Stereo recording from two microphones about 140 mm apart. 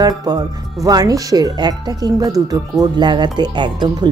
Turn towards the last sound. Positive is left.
turn(degrees=-35)  # may be behind; listen again after turning